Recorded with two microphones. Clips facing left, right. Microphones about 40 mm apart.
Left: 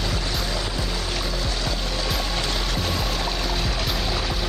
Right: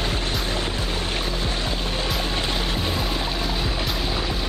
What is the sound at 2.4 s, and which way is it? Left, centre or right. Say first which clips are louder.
Music: right 1 dB; right.